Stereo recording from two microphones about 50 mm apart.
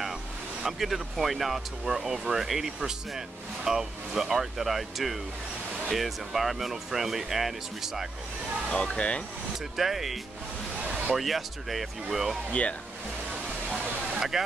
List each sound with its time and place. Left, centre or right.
0.7 s speech: centre
8.6 s speech: left
9.8 s speech: centre
10.8 s a sound: right
11.1 s speech: centre
12.4 s speech: left
14.3 s speech: centre